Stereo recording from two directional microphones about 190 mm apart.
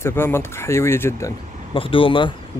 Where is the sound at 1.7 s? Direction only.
30° left (ahead or behind).